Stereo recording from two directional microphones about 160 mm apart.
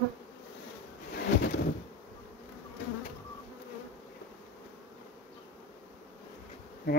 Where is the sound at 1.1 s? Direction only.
90° left.